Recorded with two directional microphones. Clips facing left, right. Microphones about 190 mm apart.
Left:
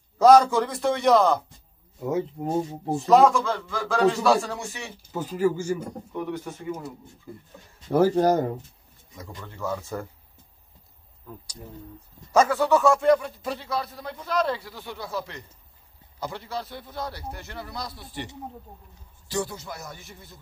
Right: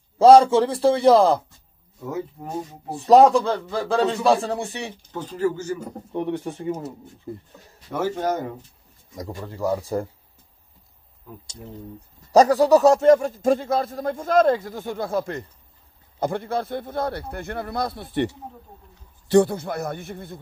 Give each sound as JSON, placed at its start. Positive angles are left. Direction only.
{"t": 0.2, "sound": "a man's voice", "side_deg": -30}
{"t": 2.0, "sound": "speech", "side_deg": 20}
{"t": 3.1, "sound": "a man's voice", "side_deg": -35}
{"t": 5.0, "sound": "speech", "side_deg": 10}
{"t": 6.1, "sound": "a man's voice", "side_deg": -30}
{"t": 7.9, "sound": "speech", "side_deg": 35}
{"t": 9.1, "sound": "a man's voice", "side_deg": -35}
{"t": 12.3, "sound": "a man's voice", "side_deg": -35}